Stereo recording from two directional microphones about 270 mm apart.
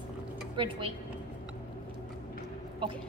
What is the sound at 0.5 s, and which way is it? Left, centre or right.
Speech, centre.